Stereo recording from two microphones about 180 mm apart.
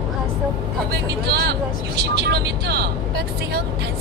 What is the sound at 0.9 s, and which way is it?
Speech, 60° right (ahead or behind).